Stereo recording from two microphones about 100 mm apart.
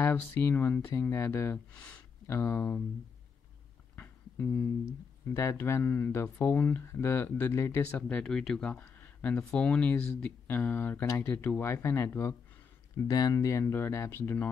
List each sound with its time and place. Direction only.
0.0 s speech: 20° left (ahead or behind)
3.9 s music: 15° left (ahead or behind)
5.3 s speech: 30° left (ahead or behind)
8.1 s speech: 5° left (ahead or behind)